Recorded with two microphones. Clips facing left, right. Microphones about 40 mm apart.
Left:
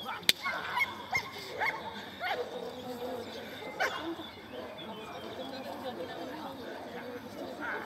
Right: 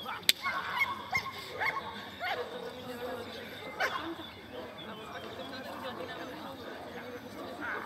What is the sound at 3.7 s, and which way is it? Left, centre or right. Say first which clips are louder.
Goose: even; centre.